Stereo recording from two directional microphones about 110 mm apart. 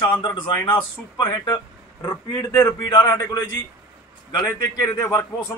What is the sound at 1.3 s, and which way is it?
Speech, 40° left (ahead or behind).